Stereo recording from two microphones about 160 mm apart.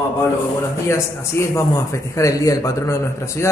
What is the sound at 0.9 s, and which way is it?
A man's voice, 15° left (ahead or behind).